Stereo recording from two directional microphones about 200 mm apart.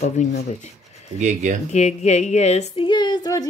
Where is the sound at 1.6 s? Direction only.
35° left (ahead or behind).